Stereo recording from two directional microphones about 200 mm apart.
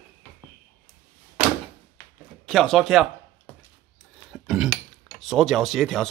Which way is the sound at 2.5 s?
Centre (ahead or behind).